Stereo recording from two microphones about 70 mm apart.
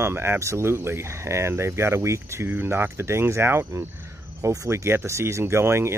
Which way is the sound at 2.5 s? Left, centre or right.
Right.